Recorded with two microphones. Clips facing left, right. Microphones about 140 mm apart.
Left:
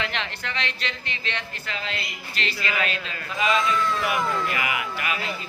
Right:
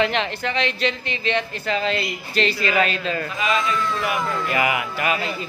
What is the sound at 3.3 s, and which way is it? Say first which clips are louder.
Speech: left 3 dB; centre (ahead or behind).